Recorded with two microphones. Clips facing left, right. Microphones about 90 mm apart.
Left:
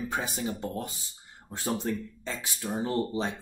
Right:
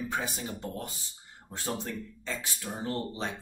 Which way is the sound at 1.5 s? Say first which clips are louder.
Left 4 dB; 15° left (ahead or behind).